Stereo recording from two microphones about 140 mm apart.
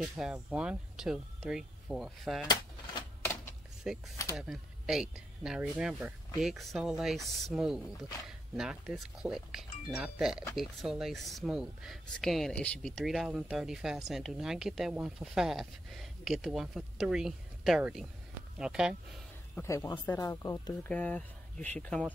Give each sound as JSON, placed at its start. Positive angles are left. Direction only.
{"t": 0.0, "sound": "speech", "side_deg": -5}
{"t": 3.9, "sound": "speech", "side_deg": -5}
{"t": 19.6, "sound": "speech", "side_deg": 25}
{"t": 20.9, "sound": "speech", "side_deg": 10}